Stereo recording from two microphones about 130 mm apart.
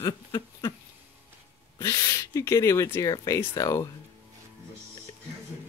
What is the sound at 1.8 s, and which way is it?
Speech, 25° left (ahead or behind).